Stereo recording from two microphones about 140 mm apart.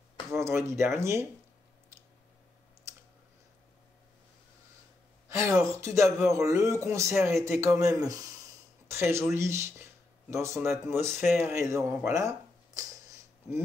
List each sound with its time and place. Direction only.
0.3 s speech: 20° right (ahead or behind)
5.3 s speech: 20° right (ahead or behind)